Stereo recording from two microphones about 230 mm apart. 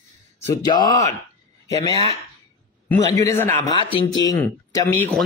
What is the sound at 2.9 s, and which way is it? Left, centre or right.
A man's voice, centre.